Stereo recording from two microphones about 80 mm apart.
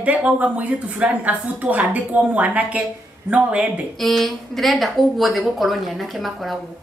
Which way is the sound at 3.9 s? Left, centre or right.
Centre.